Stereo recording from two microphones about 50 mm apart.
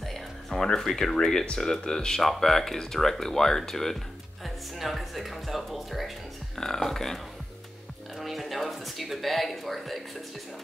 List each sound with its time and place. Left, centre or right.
0.0 s music: centre
0.7 s speech: centre
8.2 s a sound: centre